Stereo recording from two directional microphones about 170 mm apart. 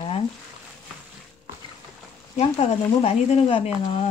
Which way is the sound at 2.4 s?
35° left (ahead or behind).